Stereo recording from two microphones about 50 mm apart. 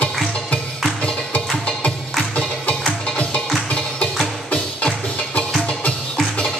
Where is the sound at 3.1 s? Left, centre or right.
Left.